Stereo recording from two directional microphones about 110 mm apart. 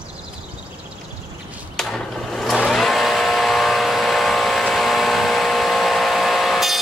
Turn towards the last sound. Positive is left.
turn(degrees=0)  # may be behind; listen again after turning